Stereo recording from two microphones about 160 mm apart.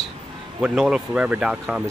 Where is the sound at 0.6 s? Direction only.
5° right (ahead or behind).